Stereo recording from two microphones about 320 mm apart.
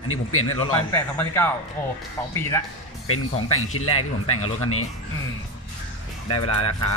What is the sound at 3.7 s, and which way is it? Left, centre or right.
Speech, left.